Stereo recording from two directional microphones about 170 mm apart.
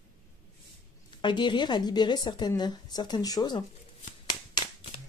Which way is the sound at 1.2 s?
25° left (ahead or behind).